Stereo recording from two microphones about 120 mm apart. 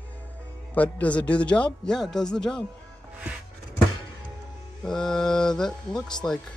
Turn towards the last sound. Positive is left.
turn(degrees=5)  # may be behind; listen again after turning